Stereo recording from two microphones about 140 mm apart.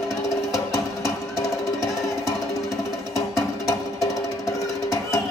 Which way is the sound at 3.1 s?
20° left (ahead or behind).